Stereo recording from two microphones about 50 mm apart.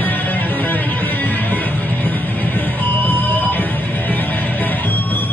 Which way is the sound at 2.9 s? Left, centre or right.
Left.